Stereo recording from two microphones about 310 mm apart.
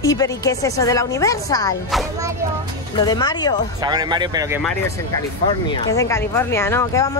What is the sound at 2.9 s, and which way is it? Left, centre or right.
Speech, centre.